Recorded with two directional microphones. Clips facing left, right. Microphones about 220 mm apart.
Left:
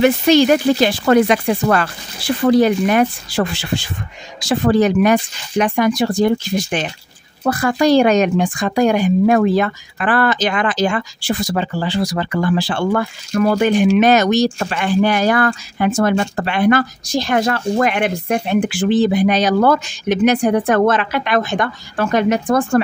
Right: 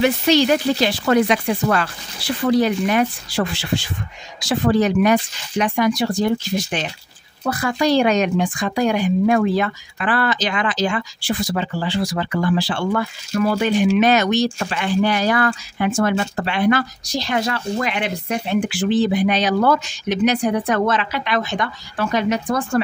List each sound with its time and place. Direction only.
0.0 s speech: 50° left (ahead or behind)